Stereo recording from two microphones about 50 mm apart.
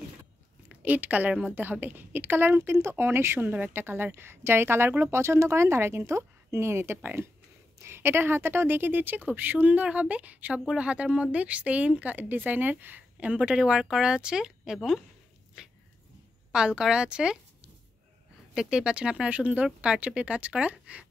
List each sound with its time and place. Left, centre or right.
0.8 s a woman's voice: right
13.2 s speech: right
15.6 s dog: centre
16.5 s speech: centre
18.5 s speech: centre